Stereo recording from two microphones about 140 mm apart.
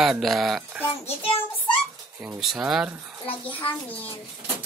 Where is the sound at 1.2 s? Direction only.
40° left (ahead or behind).